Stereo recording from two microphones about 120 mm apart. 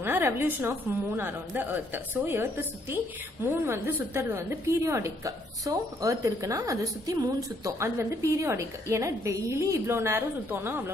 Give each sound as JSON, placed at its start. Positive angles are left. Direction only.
{"t": 0.0, "sound": "a woman's voice", "side_deg": -20}